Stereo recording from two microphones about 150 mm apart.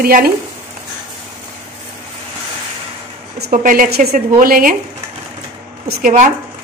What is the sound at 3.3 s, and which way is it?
A woman's voice, 70° right (ahead or behind).